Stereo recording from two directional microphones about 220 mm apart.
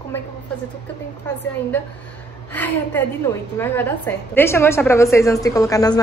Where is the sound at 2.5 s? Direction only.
10° left (ahead or behind).